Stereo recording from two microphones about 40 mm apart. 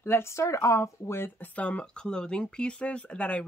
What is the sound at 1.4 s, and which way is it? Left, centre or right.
Speech, left.